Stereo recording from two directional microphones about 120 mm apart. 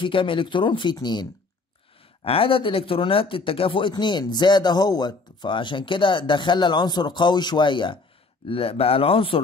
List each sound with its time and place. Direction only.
0.0 s speech: 45° left (ahead or behind)
2.2 s speech: 50° left (ahead or behind)
3.9 s speech: 35° left (ahead or behind)